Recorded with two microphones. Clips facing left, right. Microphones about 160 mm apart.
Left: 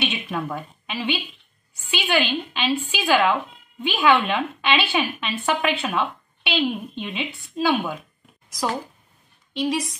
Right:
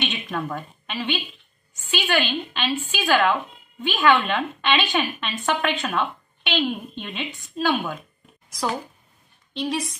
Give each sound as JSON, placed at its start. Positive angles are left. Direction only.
{"t": 0.0, "sound": "a woman's voice", "side_deg": 10}
{"t": 9.5, "sound": "a woman's voice", "side_deg": 5}